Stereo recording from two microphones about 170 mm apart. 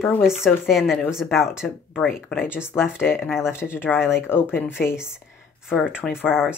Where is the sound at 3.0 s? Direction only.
5° right (ahead or behind).